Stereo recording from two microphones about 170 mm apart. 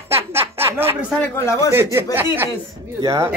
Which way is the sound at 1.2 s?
15° left (ahead or behind).